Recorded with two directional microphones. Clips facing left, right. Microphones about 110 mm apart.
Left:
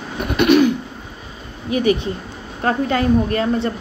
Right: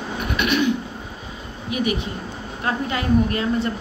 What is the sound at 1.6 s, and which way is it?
Speech, 35° left (ahead or behind).